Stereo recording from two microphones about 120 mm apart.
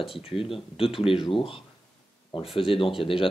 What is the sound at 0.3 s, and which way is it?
Speech, 50° left (ahead or behind).